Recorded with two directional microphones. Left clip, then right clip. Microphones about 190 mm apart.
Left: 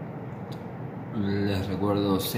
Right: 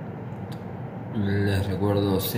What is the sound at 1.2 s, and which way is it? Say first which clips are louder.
Speech: right 2 dB; 10° right (ahead or behind).